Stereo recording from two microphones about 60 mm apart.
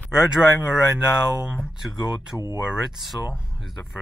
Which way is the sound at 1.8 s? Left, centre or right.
Centre.